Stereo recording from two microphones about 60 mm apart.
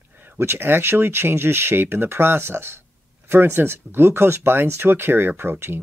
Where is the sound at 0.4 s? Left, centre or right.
Right.